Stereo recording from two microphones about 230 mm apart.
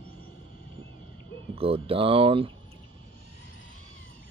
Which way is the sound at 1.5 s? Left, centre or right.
Right.